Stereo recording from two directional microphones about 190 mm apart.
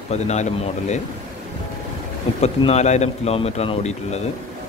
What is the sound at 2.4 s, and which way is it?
Speech, 35° left (ahead or behind).